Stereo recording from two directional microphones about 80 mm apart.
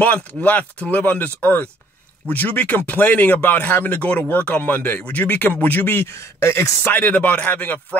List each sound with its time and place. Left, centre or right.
0.0 s speech: centre; by 6.7 s left
6.8 s speech: left